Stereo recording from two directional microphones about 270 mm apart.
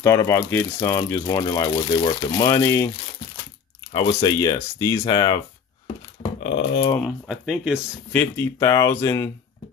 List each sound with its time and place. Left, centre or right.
0.0 s speech: centre
3.9 s speech: centre
6.4 s speech: left
7.0 s speech: centre